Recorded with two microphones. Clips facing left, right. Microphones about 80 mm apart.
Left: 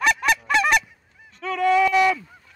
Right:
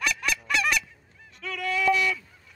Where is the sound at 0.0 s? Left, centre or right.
Left.